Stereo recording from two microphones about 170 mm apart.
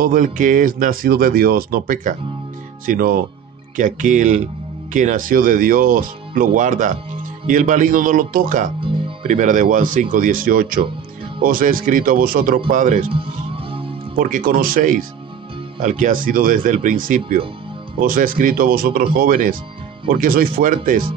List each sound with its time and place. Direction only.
0.0 s speech: 50° right (ahead or behind)
14.1 s speech: 55° right (ahead or behind)